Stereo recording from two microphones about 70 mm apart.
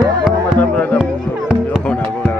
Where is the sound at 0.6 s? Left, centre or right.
Left.